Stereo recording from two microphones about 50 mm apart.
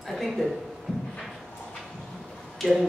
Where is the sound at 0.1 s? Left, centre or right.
Centre.